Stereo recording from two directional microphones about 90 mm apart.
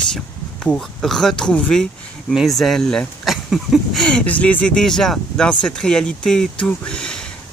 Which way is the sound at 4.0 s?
10° left (ahead or behind).